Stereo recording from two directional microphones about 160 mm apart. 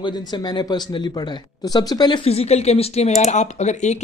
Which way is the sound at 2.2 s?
40° left (ahead or behind).